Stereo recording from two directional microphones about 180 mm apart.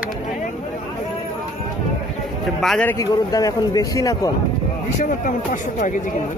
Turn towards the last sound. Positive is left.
turn(degrees=45)  # may be behind; listen again after turning